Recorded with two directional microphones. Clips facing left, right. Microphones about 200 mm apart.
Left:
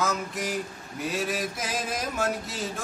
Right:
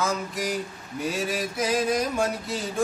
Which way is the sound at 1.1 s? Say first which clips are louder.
Even; centre (ahead or behind).